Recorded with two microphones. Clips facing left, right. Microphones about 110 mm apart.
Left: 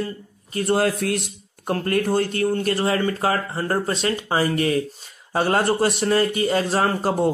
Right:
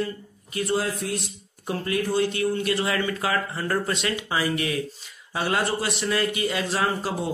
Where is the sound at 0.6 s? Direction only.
60° left (ahead or behind).